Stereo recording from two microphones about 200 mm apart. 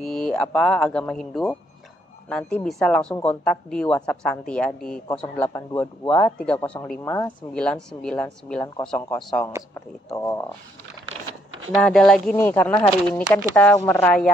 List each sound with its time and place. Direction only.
0.0 s a woman's voice: centre (ahead or behind)
9.8 s a man's voice: 15° left (ahead or behind)
11.7 s a woman's voice: centre (ahead or behind)
12.7 s speech: 25° left (ahead or behind)
13.7 s a man's voice: 10° left (ahead or behind)